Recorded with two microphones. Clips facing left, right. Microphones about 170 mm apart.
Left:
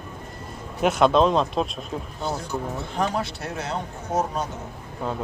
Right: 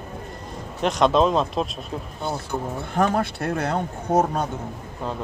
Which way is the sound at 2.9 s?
55° right (ahead or behind).